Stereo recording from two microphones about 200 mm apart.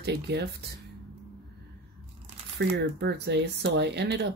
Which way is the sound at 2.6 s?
60° right (ahead or behind).